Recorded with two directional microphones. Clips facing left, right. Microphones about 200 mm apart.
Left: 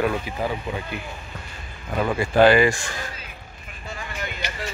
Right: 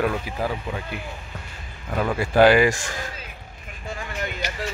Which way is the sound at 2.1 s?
5° right (ahead or behind).